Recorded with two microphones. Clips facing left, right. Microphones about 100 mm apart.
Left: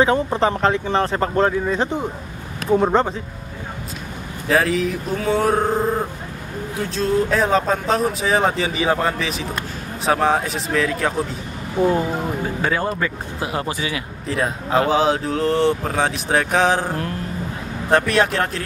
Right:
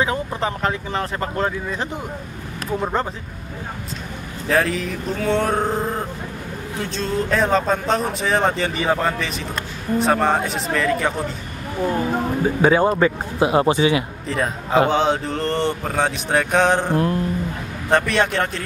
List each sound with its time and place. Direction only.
0.0 s speech: 30° left (ahead or behind)
4.5 s speech: centre (ahead or behind)
12.6 s speech: 20° right (ahead or behind)
14.2 s speech: centre (ahead or behind)